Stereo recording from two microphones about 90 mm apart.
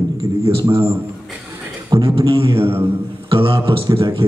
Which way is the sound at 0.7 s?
30° right (ahead or behind).